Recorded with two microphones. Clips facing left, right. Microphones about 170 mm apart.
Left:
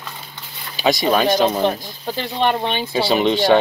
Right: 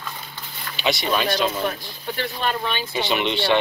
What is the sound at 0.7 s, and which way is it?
Speech, 40° left (ahead or behind).